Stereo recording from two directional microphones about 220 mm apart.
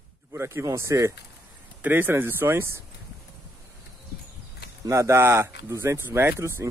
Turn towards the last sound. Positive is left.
turn(degrees=-10)  # may be behind; listen again after turning